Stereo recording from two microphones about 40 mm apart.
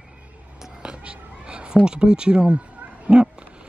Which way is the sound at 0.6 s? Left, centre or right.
Centre.